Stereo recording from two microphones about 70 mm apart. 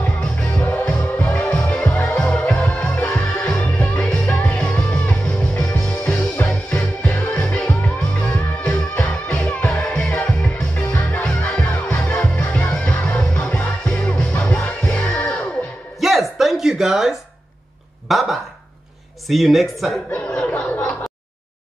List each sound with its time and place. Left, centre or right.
0.0 s music: left
16.0 s music: centre
18.0 s a sound: centre
19.2 s speech: centre
20.1 s chatter: left